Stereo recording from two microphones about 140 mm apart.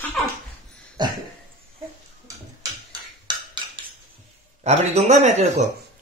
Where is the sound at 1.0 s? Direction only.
30° right (ahead or behind).